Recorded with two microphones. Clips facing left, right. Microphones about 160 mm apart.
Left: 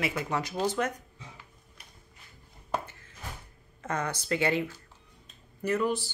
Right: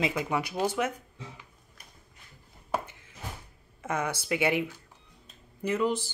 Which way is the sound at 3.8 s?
10° right (ahead or behind).